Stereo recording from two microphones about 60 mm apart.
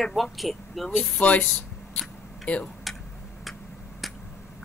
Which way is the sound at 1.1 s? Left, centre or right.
Left.